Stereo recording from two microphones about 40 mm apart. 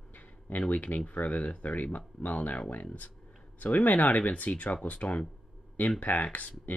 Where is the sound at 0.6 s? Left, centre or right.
Left.